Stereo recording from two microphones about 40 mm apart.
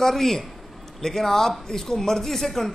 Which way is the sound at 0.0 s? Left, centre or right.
Centre.